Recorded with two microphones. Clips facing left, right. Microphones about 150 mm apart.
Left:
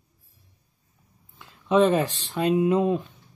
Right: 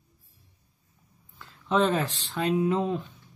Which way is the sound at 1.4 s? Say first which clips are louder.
Left 5 dB; 15° left (ahead or behind).